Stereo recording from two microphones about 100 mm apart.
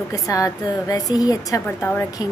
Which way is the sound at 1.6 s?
20° left (ahead or behind).